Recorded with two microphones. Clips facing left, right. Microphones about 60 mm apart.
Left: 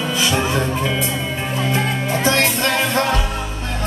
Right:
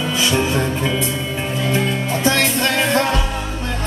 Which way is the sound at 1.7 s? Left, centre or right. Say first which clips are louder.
Right 1 dB; left.